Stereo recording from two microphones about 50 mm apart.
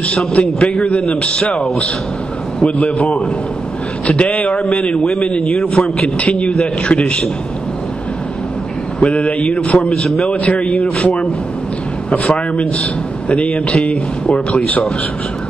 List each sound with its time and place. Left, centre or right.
0.3 s a man's voice: left
2.6 s a man's voice: left
4.1 s a man's voice: left
4.9 s a man's voice: centre
5.2 s a man's voice: left
9.0 s a man's voice: left
11.0 s a man's voice: left